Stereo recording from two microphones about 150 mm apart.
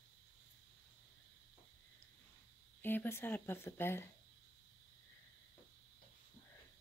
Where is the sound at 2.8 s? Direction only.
15° left (ahead or behind).